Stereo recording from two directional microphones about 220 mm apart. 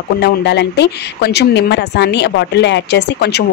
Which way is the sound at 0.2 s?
50° left (ahead or behind).